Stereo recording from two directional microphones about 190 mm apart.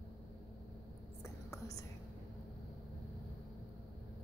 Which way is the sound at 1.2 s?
15° left (ahead or behind).